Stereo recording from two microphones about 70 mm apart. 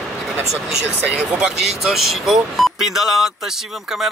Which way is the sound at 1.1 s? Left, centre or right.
Centre.